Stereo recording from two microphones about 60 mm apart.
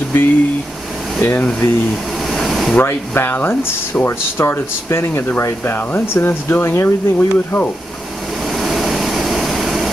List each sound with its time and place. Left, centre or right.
0.1 s speech: left
2.3 s a sound: centre
2.8 s speech: left
7.2 s speech: left
8.5 s vehicle: centre